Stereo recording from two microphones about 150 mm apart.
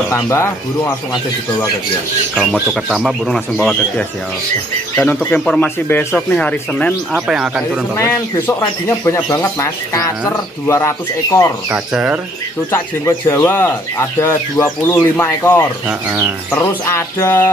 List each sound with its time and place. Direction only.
0.1 s speech: 20° left (ahead or behind)
2.3 s speech: 5° right (ahead or behind)
4.9 s speech: 10° left (ahead or behind)
7.1 s speech: 5° right (ahead or behind)
8.0 s speech: 15° left (ahead or behind)
11.7 s speech: 10° right (ahead or behind)
12.7 s speech: 15° left (ahead or behind)
15.9 s speech: 10° right (ahead or behind)
16.5 s speech: 15° left (ahead or behind)